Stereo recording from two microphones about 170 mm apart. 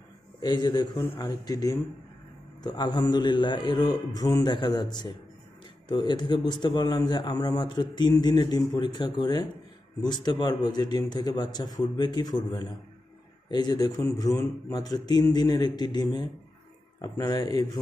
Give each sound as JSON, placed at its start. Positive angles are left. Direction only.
{"t": 0.4, "sound": "speech", "side_deg": 25}